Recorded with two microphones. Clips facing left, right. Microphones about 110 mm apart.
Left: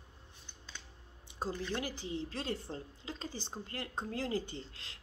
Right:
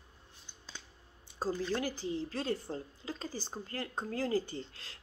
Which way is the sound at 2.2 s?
25° left (ahead or behind).